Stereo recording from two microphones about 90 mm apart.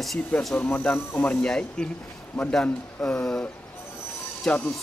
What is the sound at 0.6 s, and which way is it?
Speech, 20° left (ahead or behind).